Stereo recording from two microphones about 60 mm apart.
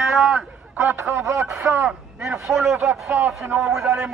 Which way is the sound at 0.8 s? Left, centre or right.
Right.